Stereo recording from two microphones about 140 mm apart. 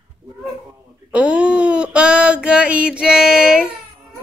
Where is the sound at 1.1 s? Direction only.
10° right (ahead or behind).